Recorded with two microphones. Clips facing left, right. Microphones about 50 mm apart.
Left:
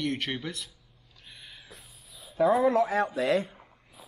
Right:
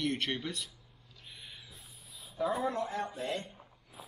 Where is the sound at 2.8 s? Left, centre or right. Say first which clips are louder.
Left 10 dB; left.